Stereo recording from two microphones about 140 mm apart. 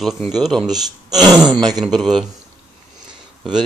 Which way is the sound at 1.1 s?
30° right (ahead or behind).